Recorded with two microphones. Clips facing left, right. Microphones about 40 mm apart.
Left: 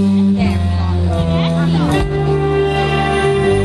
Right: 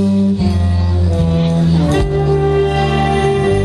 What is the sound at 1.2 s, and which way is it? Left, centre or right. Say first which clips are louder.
Music: right 2 dB; left.